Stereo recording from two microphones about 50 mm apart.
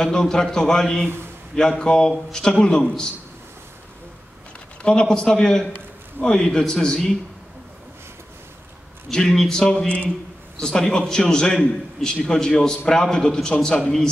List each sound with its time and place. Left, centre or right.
0.0 s a man's voice: centre
1.0 s a man's voice: right
1.5 s a man's voice: centre
4.8 s a man's voice: centre
9.1 s a man's voice: centre